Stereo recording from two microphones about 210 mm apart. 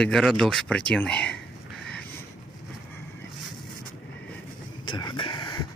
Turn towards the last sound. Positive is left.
turn(degrees=20)  # may be behind; listen again after turning